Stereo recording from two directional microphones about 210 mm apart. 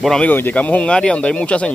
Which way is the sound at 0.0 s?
5° left (ahead or behind).